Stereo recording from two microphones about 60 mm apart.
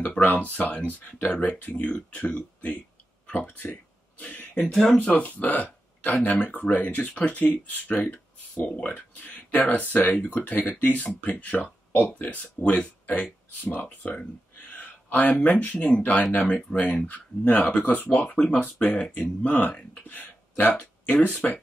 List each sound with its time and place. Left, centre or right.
0.2 s speech: left
4.6 s speech: centre
5.1 s speech: left
8.6 s speech: centre
9.1 s speech: left